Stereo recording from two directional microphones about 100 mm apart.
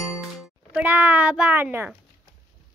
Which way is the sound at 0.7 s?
15° right (ahead or behind).